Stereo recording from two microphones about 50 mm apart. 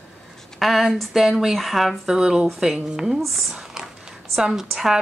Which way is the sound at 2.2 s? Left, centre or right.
Centre.